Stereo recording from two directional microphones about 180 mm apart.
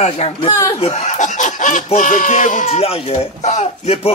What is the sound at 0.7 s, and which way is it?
Snicker, 35° left (ahead or behind).